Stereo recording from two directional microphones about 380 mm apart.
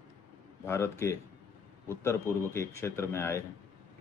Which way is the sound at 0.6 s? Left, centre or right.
Centre.